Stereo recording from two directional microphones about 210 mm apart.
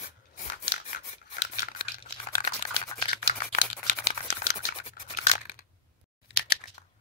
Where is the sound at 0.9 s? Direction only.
40° left (ahead or behind).